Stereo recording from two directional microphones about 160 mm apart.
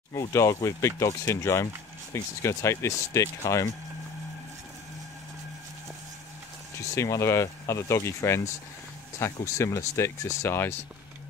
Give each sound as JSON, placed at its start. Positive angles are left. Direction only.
{"t": 0.1, "sound": "speech", "side_deg": 20}
{"t": 7.0, "sound": "speech", "side_deg": 15}